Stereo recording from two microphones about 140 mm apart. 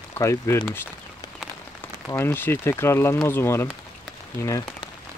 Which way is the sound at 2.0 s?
15° left (ahead or behind).